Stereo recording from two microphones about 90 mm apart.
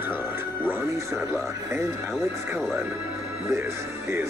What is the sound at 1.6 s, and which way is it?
Speech, 30° right (ahead or behind).